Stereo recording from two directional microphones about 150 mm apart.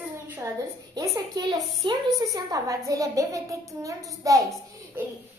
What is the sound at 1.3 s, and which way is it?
A woman's voice, 25° right (ahead or behind).